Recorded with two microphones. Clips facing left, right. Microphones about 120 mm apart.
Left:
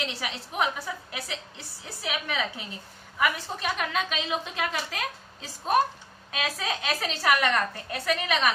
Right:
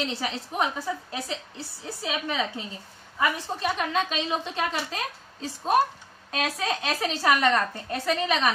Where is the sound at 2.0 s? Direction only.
30° right (ahead or behind).